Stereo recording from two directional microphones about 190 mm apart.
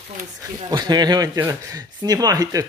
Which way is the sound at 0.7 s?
20° right (ahead or behind).